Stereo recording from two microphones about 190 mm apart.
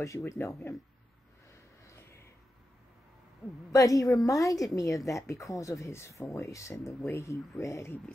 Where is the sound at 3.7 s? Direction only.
15° left (ahead or behind).